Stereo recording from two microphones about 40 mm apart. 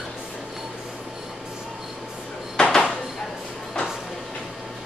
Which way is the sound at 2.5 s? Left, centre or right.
Left.